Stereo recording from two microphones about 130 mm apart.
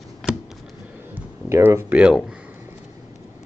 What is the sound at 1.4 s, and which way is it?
Speech, 20° right (ahead or behind).